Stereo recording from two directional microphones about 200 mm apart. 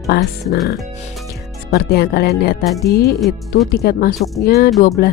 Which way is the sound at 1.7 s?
55° left (ahead or behind).